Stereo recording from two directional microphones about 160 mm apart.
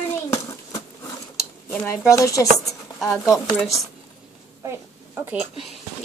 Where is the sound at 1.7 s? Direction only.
15° left (ahead or behind).